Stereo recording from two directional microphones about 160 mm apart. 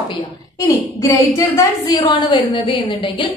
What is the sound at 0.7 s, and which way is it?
A woman's voice, 20° left (ahead or behind).